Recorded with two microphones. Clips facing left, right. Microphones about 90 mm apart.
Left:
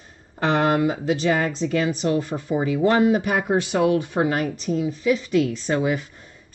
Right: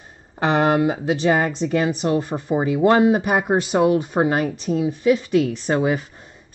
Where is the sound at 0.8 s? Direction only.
40° right (ahead or behind).